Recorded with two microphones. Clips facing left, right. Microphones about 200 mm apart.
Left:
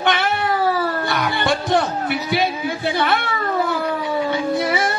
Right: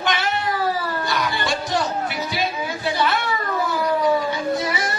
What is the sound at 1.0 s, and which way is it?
Music, 60° left (ahead or behind).